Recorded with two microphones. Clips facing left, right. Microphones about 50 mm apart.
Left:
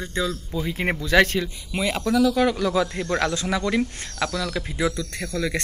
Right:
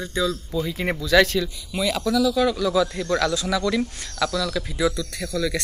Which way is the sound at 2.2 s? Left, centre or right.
Left.